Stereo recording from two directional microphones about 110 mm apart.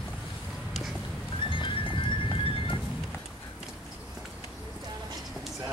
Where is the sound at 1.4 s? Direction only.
50° left (ahead or behind).